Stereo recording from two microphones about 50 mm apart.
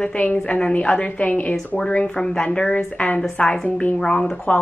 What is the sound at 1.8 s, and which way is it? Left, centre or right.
A woman's voice, centre.